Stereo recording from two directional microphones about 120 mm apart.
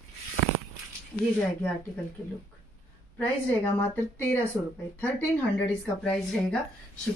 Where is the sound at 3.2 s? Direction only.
15° left (ahead or behind).